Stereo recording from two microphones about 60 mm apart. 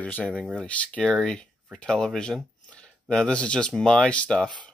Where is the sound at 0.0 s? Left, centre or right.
Left.